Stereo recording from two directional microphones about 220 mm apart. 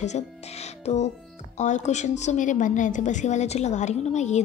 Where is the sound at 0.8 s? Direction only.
30° left (ahead or behind).